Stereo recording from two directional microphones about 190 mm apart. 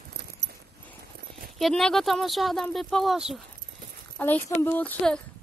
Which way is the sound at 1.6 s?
5° left (ahead or behind).